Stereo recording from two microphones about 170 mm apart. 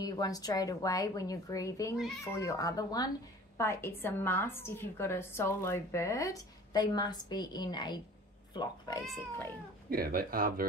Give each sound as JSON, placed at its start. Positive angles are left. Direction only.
{"t": 0.0, "sound": "a woman's voice", "side_deg": 20}
{"t": 2.0, "sound": "speech", "side_deg": 0}
{"t": 2.3, "sound": "a woman's voice", "side_deg": 20}
{"t": 9.8, "sound": "speech", "side_deg": -60}